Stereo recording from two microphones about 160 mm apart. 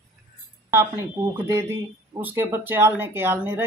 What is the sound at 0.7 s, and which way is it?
Speech, 15° right (ahead or behind).